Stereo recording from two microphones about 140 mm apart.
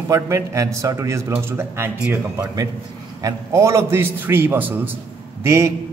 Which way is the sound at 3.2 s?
25° right (ahead or behind).